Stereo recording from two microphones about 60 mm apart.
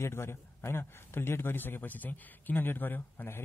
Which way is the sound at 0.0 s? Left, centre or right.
Left.